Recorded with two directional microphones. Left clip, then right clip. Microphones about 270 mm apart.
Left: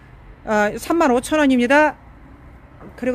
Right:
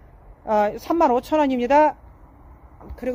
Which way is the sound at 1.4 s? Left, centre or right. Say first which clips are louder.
Left 2 dB; centre.